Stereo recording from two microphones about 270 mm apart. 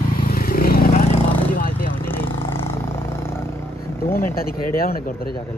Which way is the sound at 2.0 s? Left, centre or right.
Centre.